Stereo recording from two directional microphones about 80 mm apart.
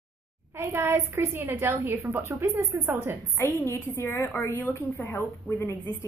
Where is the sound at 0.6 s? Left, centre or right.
Right.